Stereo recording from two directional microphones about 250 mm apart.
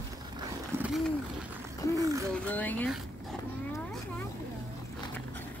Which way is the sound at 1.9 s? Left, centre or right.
Centre.